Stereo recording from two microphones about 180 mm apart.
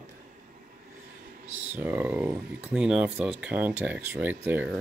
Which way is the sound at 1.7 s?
10° right (ahead or behind).